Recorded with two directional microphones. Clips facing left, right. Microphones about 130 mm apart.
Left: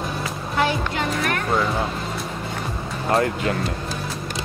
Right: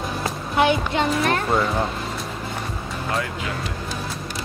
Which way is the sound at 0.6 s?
20° right (ahead or behind).